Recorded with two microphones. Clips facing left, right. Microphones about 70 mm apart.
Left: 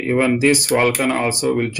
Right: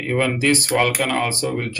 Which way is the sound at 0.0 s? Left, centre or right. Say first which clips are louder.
Left 4 dB; centre.